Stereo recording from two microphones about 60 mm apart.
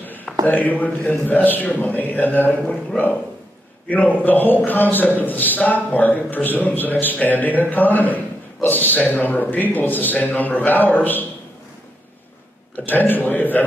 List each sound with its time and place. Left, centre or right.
0.0 s a sound: left
0.5 s a man's voice: left
3.9 s a man's voice: left
12.8 s a man's voice: left